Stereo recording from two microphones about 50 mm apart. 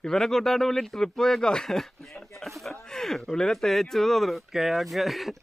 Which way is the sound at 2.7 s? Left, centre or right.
Centre.